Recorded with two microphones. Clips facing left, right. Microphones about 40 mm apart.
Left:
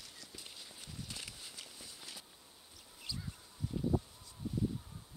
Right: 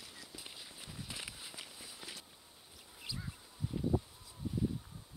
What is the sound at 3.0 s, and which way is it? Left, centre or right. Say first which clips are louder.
Duck: even; centre.